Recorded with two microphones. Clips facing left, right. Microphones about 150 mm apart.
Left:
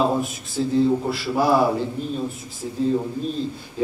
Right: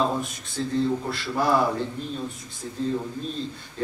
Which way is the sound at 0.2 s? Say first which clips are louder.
Left 5 dB; 5° left (ahead or behind).